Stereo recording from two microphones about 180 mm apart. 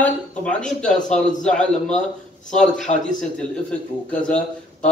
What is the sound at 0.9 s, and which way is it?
Speech, 45° left (ahead or behind).